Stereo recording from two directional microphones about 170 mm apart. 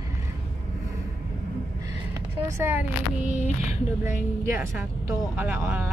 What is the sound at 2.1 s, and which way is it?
Speech, 15° right (ahead or behind).